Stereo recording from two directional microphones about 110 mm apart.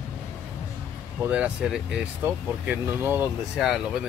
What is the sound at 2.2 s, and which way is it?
Speech, 20° right (ahead or behind).